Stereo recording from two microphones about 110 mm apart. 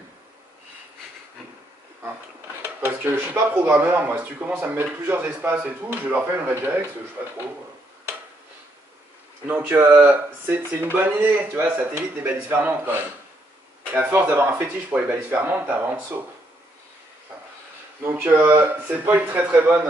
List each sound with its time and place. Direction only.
2.8 s speech: 20° right (ahead or behind)
9.5 s speech: 15° right (ahead or behind)
18.0 s speech: 15° right (ahead or behind)